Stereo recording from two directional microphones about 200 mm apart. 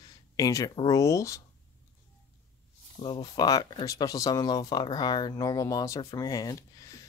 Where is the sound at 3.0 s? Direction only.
25° left (ahead or behind).